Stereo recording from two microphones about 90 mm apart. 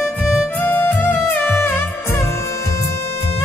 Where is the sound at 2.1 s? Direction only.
30° left (ahead or behind).